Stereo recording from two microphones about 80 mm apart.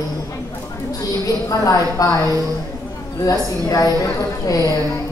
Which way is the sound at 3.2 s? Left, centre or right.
Left.